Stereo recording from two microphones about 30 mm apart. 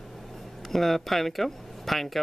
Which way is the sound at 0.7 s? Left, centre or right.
Centre.